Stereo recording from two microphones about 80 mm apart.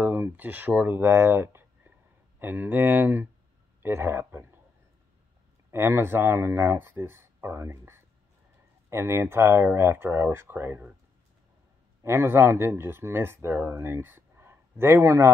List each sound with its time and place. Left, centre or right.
0.0 s speech: right
5.7 s speech: right
12.0 s speech: right